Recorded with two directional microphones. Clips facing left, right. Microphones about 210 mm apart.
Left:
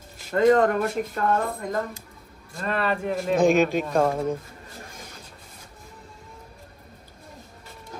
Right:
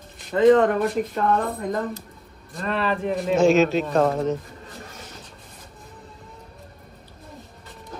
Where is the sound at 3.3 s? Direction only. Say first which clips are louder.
Right 2 dB; 15° left (ahead or behind).